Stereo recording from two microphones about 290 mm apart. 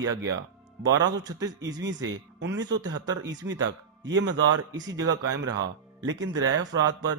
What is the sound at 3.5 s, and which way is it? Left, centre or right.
Speech, right.